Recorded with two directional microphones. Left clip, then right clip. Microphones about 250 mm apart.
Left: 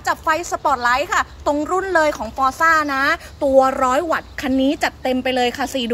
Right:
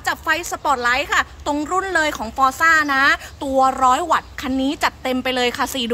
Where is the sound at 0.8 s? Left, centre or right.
Centre.